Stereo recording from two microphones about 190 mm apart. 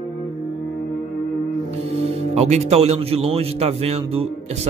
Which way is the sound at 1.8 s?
35° right (ahead or behind).